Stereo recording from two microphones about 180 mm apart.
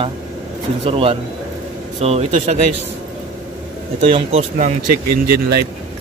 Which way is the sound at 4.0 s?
35° right (ahead or behind).